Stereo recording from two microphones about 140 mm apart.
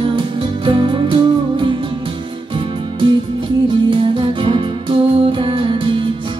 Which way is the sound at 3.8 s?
35° right (ahead or behind).